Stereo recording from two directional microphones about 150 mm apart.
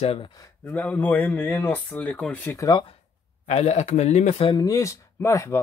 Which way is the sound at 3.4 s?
50° left (ahead or behind).